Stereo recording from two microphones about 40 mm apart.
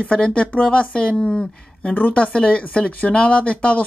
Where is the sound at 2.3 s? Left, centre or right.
Left.